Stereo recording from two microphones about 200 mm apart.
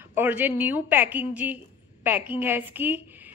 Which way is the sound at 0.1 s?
10° right (ahead or behind).